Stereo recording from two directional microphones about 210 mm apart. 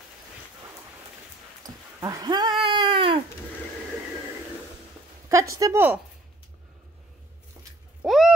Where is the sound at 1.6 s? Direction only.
15° right (ahead or behind).